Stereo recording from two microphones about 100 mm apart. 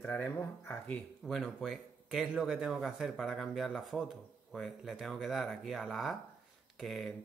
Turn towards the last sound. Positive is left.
turn(degrees=5)  # may be behind; listen again after turning